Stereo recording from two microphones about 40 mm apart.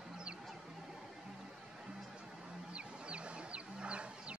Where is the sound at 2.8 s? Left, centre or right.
Right.